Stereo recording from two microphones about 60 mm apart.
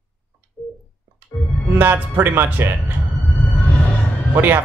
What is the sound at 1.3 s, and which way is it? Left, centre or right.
Speech, left.